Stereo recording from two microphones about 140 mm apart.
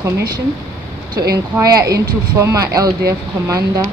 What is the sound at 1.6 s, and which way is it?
Speech, 25° right (ahead or behind).